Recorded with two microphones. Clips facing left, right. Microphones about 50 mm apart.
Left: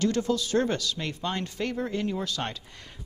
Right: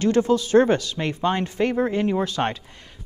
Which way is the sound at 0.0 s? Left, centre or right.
Right.